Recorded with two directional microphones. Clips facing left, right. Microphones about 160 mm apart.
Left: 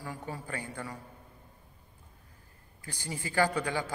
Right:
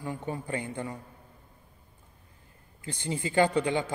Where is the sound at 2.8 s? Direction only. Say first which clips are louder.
Right 6 dB; 25° right (ahead or behind).